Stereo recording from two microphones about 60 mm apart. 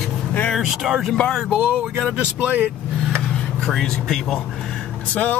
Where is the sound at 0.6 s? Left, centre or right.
Centre; by 2.6 s right.